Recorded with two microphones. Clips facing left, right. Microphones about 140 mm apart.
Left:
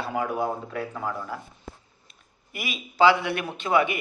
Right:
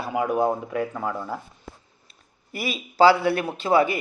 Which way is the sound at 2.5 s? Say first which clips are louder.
Right 3 dB; 35° right (ahead or behind).